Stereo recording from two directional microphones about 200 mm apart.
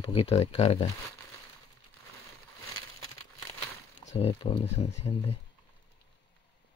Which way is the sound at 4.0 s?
35° left (ahead or behind).